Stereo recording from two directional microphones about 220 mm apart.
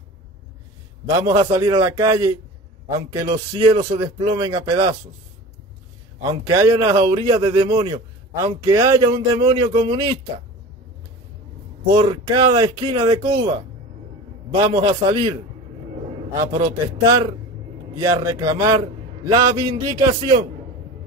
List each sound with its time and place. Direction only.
1.2 s speech: 15° right (ahead or behind)
6.4 s speech: 15° right (ahead or behind)
8.7 s speech: 15° right (ahead or behind)
11.9 s speech: 25° right (ahead or behind)
14.6 s a man's voice: 20° right (ahead or behind)